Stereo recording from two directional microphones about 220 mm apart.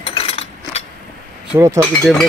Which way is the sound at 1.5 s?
15° right (ahead or behind).